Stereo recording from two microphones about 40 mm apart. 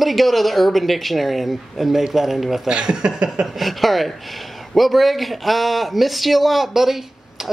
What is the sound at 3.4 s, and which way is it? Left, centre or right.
Speech, centre.